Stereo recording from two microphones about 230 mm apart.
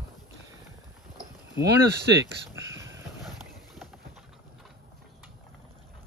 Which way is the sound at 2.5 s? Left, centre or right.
Centre.